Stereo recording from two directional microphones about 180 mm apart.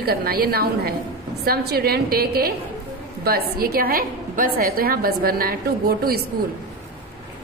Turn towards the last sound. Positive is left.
turn(degrees=-55)  # may be behind; listen again after turning